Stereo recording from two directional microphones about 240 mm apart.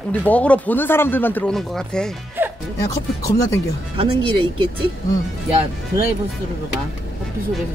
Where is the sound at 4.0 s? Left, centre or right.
Right.